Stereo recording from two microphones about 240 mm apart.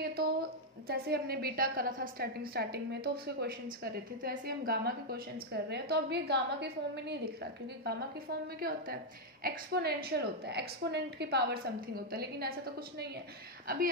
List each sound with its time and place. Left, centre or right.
0.0 s a woman's voice: right